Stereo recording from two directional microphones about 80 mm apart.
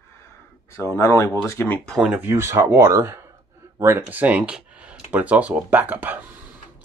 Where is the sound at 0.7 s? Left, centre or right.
Left.